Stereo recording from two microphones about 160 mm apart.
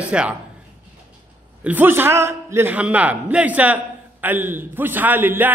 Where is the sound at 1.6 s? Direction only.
10° right (ahead or behind).